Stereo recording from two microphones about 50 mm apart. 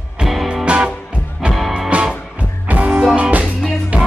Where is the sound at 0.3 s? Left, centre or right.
Centre.